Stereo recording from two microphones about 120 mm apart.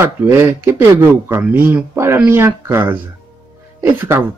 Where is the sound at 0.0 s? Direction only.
15° right (ahead or behind).